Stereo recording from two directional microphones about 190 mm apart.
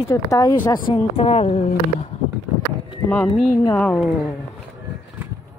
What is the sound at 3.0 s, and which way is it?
Speech, 5° left (ahead or behind).